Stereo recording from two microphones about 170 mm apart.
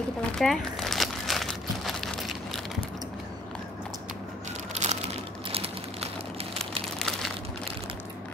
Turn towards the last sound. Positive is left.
turn(degrees=5)  # may be behind; listen again after turning